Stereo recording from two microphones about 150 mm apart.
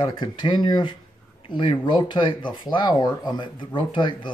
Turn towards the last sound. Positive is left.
turn(degrees=35)  # may be behind; listen again after turning